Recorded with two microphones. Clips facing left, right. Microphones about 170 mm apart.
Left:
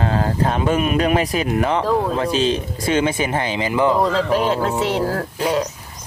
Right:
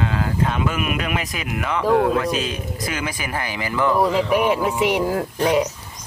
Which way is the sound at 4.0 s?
10° right (ahead or behind).